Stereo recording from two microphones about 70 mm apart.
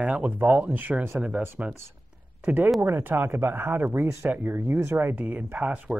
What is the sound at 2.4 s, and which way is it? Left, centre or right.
Speech, right.